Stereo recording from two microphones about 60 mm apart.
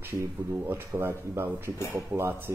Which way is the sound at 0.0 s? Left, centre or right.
Right.